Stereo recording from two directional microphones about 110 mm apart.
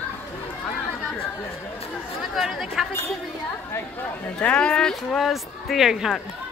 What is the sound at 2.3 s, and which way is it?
Chatter, centre (ahead or behind).